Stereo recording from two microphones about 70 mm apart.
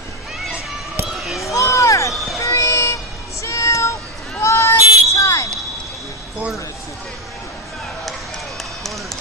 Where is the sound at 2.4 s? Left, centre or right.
Left.